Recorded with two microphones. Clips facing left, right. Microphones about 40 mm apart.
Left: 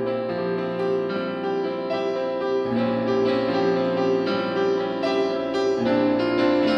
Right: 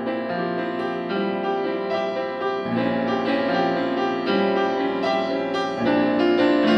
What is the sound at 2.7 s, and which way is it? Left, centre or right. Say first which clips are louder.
Music: even; centre.